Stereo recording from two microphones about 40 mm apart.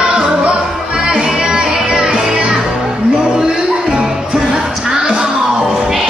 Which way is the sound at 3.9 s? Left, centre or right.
Right.